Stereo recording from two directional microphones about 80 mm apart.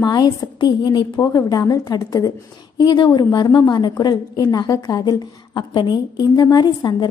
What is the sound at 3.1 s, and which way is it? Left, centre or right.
A woman's voice, left.